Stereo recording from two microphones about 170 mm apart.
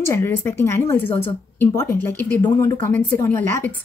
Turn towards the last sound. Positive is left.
turn(degrees=15)  # may be behind; listen again after turning